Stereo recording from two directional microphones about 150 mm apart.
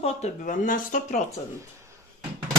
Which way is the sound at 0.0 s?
55° left (ahead or behind).